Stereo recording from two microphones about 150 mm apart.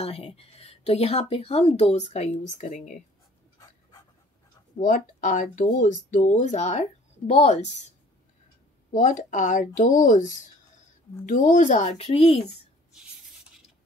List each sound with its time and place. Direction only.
0.0 s speech: 40° left (ahead or behind)
4.7 s speech: 60° left (ahead or behind)
8.9 s speech: 55° left (ahead or behind)
11.2 s speech: 60° left (ahead or behind); by 12.4 s 45° left (ahead or behind)